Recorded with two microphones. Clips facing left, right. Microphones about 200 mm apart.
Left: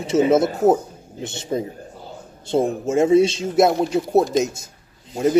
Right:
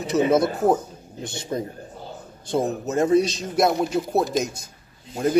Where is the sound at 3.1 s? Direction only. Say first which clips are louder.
Left 5 dB; 25° left (ahead or behind).